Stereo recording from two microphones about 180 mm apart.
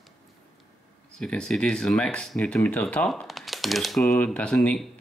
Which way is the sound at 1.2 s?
5° left (ahead or behind).